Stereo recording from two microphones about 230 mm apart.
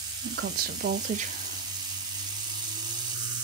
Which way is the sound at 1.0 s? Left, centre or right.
Right.